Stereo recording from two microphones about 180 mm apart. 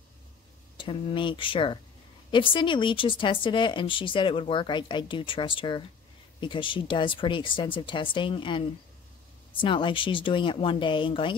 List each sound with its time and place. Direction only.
0.7 s a woman's voice: 30° left (ahead or behind)